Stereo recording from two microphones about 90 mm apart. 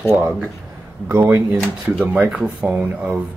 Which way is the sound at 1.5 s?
15° right (ahead or behind).